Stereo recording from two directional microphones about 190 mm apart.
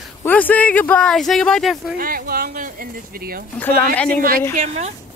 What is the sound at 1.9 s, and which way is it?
Speech, 50° right (ahead or behind).